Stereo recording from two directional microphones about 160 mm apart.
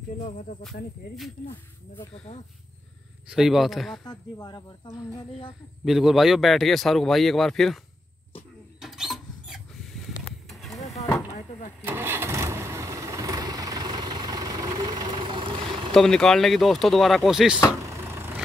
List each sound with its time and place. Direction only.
0.2 s speech: 55° left (ahead or behind)
3.3 s speech: 5° right (ahead or behind)
4.0 s speech: 25° left (ahead or behind)
5.9 s speech: centre (ahead or behind)
8.8 s rodents: centre (ahead or behind)
10.0 s a sound: centre (ahead or behind)
11.8 s engine starting: 15° right (ahead or behind); by 15.9 s 30° right (ahead or behind)
15.9 s speech: 5° left (ahead or behind)
17.8 s vehicle: 15° right (ahead or behind)